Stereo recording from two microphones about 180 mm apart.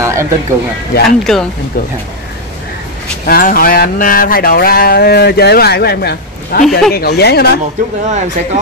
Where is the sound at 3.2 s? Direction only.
55° left (ahead or behind).